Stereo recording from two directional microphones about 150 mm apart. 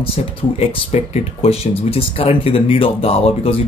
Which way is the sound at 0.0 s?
40° left (ahead or behind).